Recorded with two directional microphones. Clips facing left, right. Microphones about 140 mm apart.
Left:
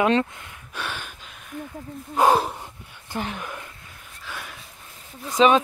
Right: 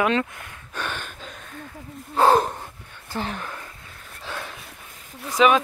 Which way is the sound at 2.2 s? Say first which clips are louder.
Right 1 dB; 10° left (ahead or behind).